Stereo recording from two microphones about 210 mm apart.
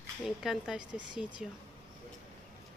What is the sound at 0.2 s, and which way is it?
Speech, centre (ahead or behind).